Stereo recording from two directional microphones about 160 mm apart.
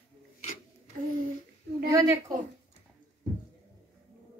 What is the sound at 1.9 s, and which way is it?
Speech, 20° right (ahead or behind).